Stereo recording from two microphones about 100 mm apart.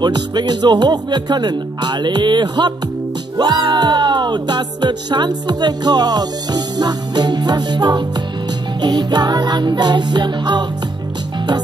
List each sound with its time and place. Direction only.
0.0 s music: 45° right (ahead or behind)